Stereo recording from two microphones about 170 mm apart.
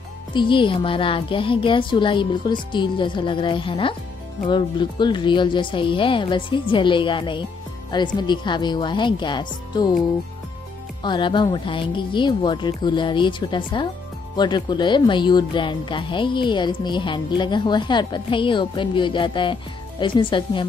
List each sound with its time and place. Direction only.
0.3 s speech: 30° left (ahead or behind)
11.0 s speech: 25° left (ahead or behind)